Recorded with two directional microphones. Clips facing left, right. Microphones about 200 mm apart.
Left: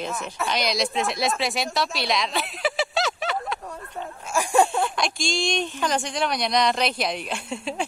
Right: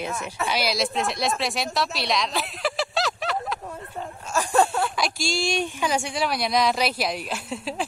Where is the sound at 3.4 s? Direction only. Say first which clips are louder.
Even; 5° right (ahead or behind).